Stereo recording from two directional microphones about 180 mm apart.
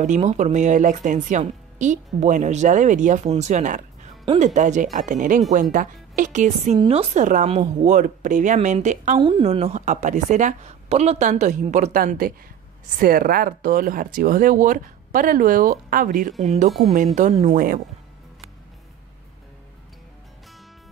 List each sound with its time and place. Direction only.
0.0 s a woman's voice: 40° right (ahead or behind)
9.2 s a woman's voice: 30° right (ahead or behind); by 17.8 s 50° right (ahead or behind)